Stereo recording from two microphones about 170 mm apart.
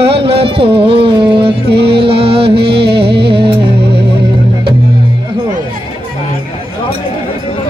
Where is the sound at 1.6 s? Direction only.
70° right (ahead or behind).